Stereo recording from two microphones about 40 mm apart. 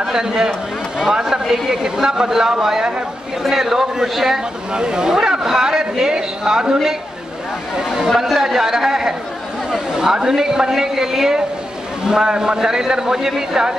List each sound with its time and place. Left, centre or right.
0.0 s a man's voice: centre
4.7 s a man's voice: centre
8.1 s a man's voice: centre